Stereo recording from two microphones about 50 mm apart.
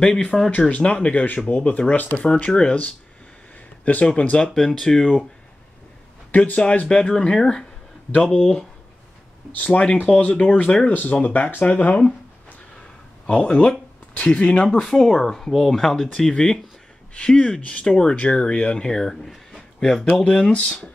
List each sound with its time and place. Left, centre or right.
0.0 s speech: centre
0.5 s speech: left
2.2 s speech: centre
3.8 s speech: left
4.5 s speech: centre
4.8 s speech: centre
6.5 s speech: left
9.6 s speech: left
10.0 s speech: centre
10.9 s speech: left
13.3 s speech: left
14.9 s speech: centre; by 20.8 s left